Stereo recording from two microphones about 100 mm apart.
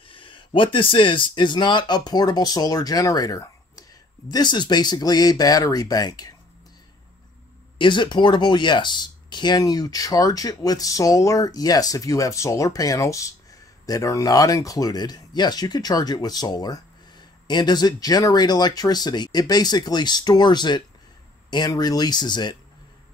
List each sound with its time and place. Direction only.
0.1 s speech: 60° left (ahead or behind); by 6.3 s 40° left (ahead or behind)
7.8 s speech: 50° left (ahead or behind)